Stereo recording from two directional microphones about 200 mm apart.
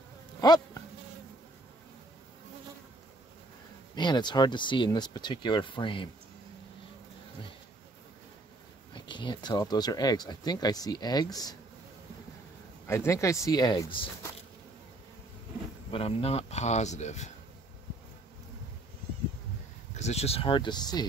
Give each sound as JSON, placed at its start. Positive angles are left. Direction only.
{"t": 0.4, "sound": "insect", "side_deg": 20}
{"t": 3.9, "sound": "speech", "side_deg": 20}
{"t": 8.9, "sound": "speech", "side_deg": 25}
{"t": 12.8, "sound": "speech", "side_deg": 15}
{"t": 15.9, "sound": "speech", "side_deg": 30}
{"t": 20.0, "sound": "speech", "side_deg": 30}